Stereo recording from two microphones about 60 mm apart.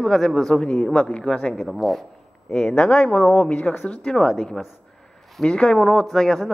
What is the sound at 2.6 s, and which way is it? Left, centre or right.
A man's voice, centre.